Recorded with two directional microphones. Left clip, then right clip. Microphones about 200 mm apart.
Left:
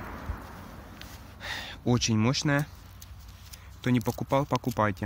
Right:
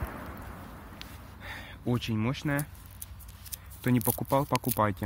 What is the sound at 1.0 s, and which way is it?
Gasp, 40° right (ahead or behind).